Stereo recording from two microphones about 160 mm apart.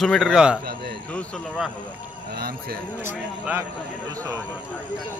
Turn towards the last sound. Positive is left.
turn(degrees=-20)  # may be behind; listen again after turning